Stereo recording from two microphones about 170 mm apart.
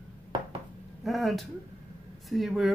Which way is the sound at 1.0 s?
Centre (ahead or behind).